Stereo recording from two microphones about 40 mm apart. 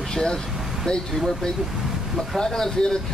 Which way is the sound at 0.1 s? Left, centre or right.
Centre.